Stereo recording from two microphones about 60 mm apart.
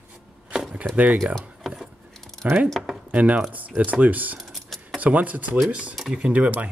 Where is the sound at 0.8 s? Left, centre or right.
Right.